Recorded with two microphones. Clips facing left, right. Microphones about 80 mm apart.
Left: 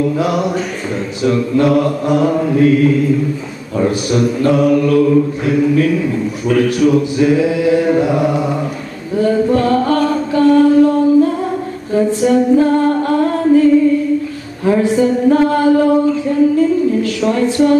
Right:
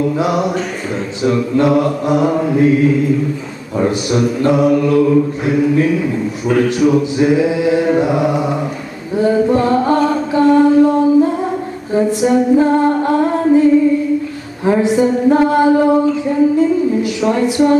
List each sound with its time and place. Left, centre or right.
0.2 s music: centre
1.6 s music: right
6.4 s music: centre
8.3 s mantra: centre
9.1 s music: right
11.9 s singing: centre
14.6 s music: right